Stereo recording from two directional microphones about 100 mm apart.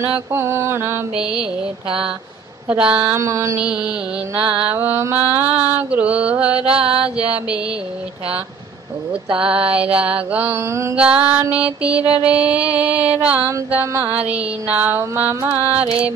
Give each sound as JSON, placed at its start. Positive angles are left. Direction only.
{"t": 0.3, "sound": "a sound", "side_deg": -25}
{"t": 1.2, "sound": "mantra", "side_deg": -5}
{"t": 2.7, "sound": "a sound", "side_deg": -15}
{"t": 3.5, "sound": "mantra", "side_deg": -10}
{"t": 4.4, "sound": "mantra", "side_deg": -55}
{"t": 4.6, "sound": "mantra", "side_deg": -20}
{"t": 9.4, "sound": "mantra", "side_deg": -10}
{"t": 10.6, "sound": "a sound", "side_deg": -30}
{"t": 11.0, "sound": "mantra", "side_deg": -10}